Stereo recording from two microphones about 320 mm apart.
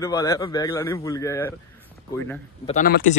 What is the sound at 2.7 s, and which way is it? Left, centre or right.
Speech, left.